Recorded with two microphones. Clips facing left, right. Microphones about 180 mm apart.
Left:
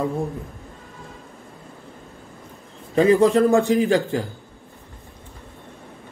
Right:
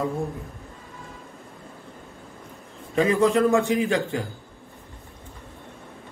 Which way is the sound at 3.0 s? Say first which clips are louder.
Left 4 dB; 35° left (ahead or behind).